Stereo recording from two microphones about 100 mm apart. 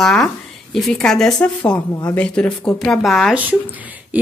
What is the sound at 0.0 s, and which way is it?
Speech, 5° left (ahead or behind).